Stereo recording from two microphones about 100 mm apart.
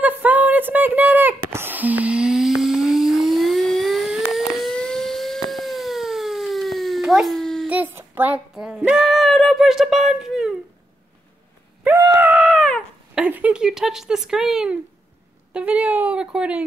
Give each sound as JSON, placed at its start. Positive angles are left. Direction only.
{"t": 0.0, "sound": "a sound", "side_deg": -15}
{"t": 4.3, "sound": "siren", "side_deg": 0}
{"t": 7.6, "sound": "child singing", "side_deg": -15}
{"t": 8.5, "sound": "speech", "side_deg": -5}
{"t": 9.0, "sound": "music", "side_deg": 0}
{"t": 12.4, "sound": "dog", "side_deg": 0}
{"t": 13.1, "sound": "a sound", "side_deg": -15}
{"t": 15.5, "sound": "a woman's voice", "side_deg": -15}